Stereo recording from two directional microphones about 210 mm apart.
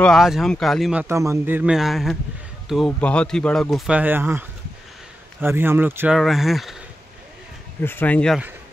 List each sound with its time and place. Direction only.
0.0 s speech: centre (ahead or behind)
1.0 s a man's voice: 15° right (ahead or behind)
7.8 s speech: 10° left (ahead or behind)